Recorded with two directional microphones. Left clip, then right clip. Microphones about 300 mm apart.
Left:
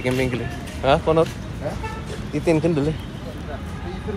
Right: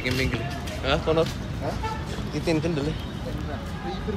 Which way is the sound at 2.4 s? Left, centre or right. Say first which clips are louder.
Left 6 dB; left.